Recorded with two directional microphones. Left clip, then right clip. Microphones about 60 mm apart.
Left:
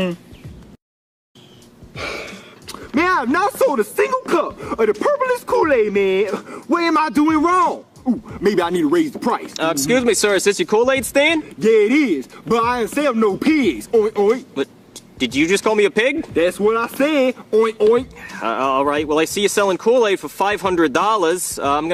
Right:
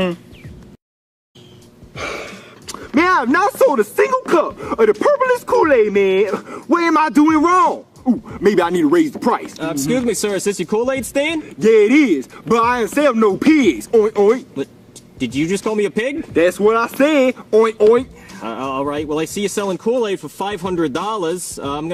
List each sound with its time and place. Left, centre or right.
2.0 s a sound: centre
2.8 s speech: centre
9.8 s speech: centre
11.4 s speech: centre
15.3 s speech: left
15.6 s speech: centre
18.2 s speech: centre
18.7 s speech: left
19.6 s speech: centre